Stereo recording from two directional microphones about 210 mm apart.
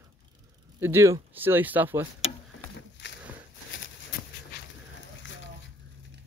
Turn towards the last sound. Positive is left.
turn(degrees=60)  # may be behind; listen again after turning